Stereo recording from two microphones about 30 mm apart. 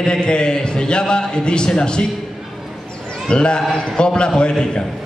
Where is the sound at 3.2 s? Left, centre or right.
Left.